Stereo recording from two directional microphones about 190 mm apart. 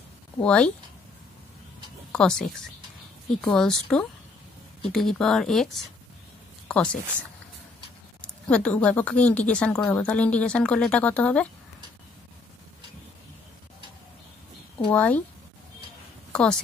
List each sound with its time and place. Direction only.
0.4 s speech: 5° left (ahead or behind)
2.1 s speech: 5° left (ahead or behind)
6.7 s speech: 5° left (ahead or behind)
8.2 s speech: 5° left (ahead or behind)
14.9 s speech: 10° left (ahead or behind)
16.3 s a sound: 5° left (ahead or behind)